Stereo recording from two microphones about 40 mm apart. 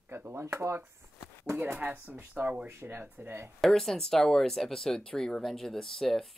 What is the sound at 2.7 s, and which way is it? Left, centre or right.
Speech, right.